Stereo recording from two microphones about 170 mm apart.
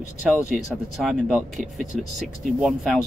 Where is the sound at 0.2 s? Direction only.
Centre (ahead or behind).